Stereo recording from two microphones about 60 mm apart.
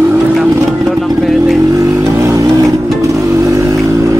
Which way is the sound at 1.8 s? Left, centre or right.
Right.